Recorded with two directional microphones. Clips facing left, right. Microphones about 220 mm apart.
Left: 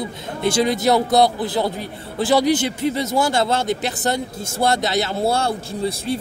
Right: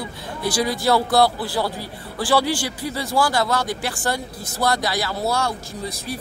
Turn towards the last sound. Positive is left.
turn(degrees=30)  # may be behind; listen again after turning